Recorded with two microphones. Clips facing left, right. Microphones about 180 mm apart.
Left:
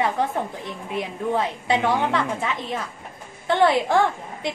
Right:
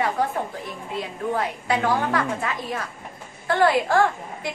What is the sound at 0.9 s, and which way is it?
A woman's voice, 20° left (ahead or behind).